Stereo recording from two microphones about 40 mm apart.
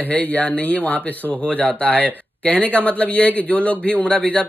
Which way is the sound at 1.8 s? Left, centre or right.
Left.